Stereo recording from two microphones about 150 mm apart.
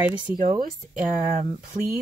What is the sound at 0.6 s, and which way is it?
Speech, 60° right (ahead or behind).